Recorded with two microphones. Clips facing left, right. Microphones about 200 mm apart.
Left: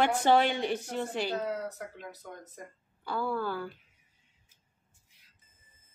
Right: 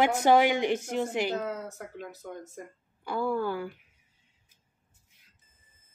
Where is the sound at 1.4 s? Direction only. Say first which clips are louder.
Left 1 dB; 45° right (ahead or behind).